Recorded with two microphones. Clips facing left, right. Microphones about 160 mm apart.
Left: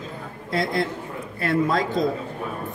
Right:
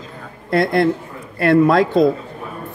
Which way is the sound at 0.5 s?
60° right (ahead or behind).